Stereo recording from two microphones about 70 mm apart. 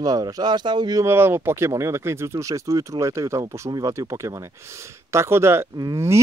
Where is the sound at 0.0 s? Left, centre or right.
Right.